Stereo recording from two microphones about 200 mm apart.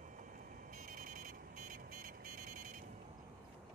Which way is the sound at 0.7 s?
40° right (ahead or behind).